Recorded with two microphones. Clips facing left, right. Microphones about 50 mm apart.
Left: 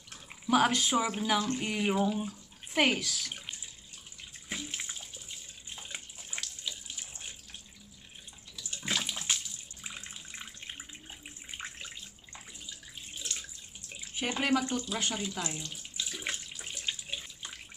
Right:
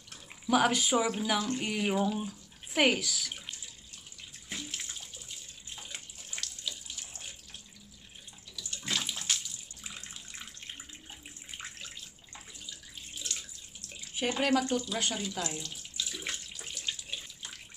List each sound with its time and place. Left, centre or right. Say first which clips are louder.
0.1 s a sound: even; centre
0.7 s speech: right 1 dB; centre
4.5 s bathtub: left 2 dB; centre
8.5 s bathtub: left 1 dB; centre
12.4 s water: even; centre
14.1 s speech: right 1 dB; centre
16.0 s water: left 1 dB; centre